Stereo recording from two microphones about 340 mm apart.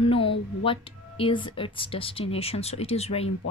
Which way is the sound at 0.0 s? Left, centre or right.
Centre.